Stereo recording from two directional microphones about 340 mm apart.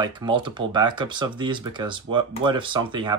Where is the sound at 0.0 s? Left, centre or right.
Centre.